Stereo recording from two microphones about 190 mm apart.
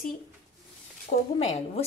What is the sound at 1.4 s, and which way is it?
Speech, 35° left (ahead or behind).